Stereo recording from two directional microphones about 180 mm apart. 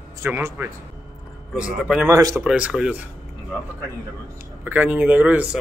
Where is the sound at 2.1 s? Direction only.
15° right (ahead or behind).